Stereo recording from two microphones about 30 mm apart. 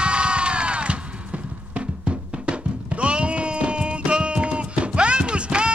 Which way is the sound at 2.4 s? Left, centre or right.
Right.